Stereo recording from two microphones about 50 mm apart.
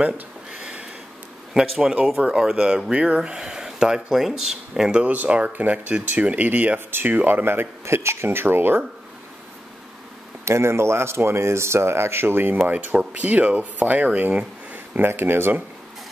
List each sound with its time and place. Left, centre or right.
0.5 s a sound: centre
1.5 s speech: centre
5.0 s speech: right
7.8 s speech: right
10.4 s speech: right
12.6 s speech: right
15.0 s speech: right